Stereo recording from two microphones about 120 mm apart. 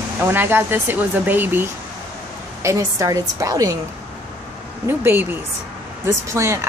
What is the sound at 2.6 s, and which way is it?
Speech, 25° right (ahead or behind).